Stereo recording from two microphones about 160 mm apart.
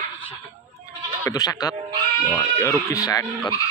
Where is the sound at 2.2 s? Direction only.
10° left (ahead or behind).